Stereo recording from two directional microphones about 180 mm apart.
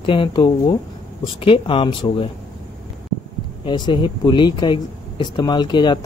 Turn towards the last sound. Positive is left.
turn(degrees=25)  # may be behind; listen again after turning